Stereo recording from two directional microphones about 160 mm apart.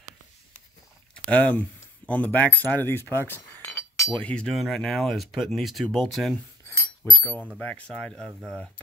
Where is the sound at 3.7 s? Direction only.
Centre (ahead or behind).